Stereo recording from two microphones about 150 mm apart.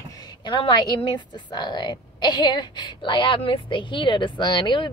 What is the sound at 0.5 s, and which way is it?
A woman's voice, 30° left (ahead or behind).